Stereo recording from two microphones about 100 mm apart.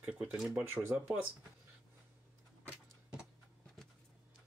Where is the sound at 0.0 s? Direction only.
10° right (ahead or behind).